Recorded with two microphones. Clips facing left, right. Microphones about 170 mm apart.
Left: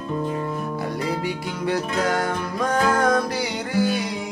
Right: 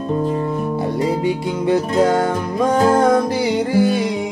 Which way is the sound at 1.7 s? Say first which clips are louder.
Right 8 dB; 25° right (ahead or behind).